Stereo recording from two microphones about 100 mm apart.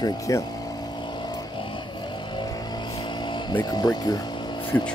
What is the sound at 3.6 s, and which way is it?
Speech, 45° left (ahead or behind).